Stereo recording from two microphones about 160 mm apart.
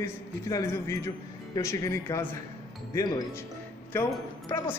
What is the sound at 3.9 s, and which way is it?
Speech, 10° left (ahead or behind).